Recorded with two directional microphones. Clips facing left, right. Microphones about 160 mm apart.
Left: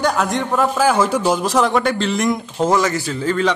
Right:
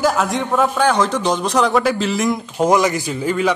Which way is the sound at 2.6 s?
15° right (ahead or behind).